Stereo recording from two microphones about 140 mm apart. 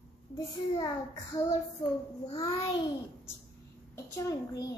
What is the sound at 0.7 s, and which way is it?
Child singing, 30° left (ahead or behind).